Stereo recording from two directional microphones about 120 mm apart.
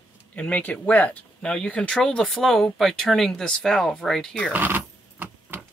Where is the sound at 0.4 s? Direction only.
10° left (ahead or behind).